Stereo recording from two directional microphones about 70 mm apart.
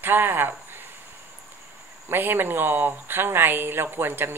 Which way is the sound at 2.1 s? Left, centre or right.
Right.